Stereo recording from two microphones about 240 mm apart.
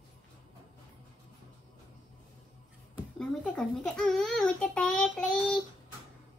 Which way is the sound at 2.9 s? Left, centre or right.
Centre.